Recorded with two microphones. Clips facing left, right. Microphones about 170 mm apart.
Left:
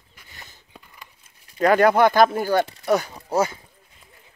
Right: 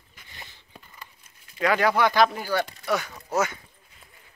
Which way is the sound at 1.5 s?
45° left (ahead or behind).